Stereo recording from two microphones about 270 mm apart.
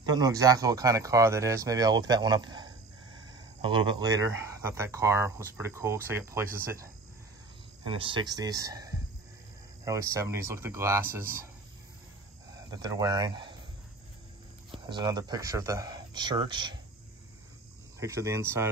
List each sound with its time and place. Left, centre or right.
0.0 s speech: centre
12.4 s speech: centre
14.7 s speech: centre
17.9 s speech: centre